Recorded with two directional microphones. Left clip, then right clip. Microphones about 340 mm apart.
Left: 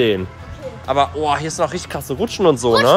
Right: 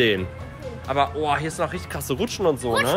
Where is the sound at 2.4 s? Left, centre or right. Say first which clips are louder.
Left 8 dB; left.